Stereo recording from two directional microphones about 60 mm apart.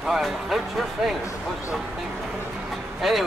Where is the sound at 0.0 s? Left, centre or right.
Centre.